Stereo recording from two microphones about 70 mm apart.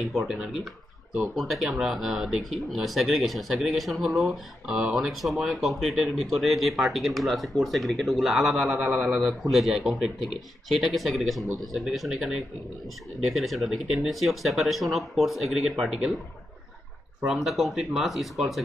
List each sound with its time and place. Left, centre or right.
0.0 s speech: centre
17.3 s speech: centre